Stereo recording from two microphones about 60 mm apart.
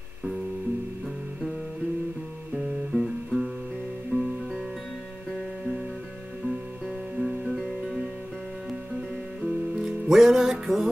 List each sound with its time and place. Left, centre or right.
2.9 s music: centre
4.1 s music: right
7.2 s music: centre
9.4 s music: centre